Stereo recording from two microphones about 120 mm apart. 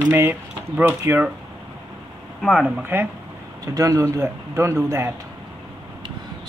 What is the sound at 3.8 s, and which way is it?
Speech, 25° right (ahead or behind).